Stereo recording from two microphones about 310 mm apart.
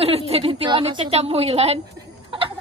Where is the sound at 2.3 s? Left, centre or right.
Centre.